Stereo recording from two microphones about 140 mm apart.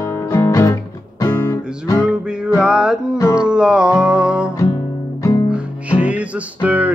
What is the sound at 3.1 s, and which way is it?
Music, 20° left (ahead or behind).